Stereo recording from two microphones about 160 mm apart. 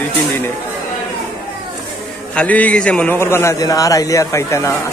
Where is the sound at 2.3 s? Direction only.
10° left (ahead or behind).